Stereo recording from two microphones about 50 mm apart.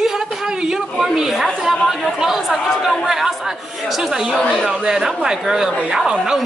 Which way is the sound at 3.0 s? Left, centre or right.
Centre.